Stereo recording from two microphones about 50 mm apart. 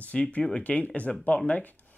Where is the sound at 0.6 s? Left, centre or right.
Left.